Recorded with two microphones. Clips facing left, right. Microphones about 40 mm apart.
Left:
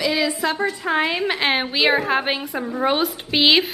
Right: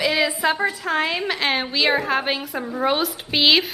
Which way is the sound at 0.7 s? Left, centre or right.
Centre.